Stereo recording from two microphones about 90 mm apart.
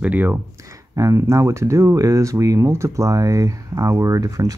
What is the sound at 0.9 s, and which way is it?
Speech, 35° right (ahead or behind).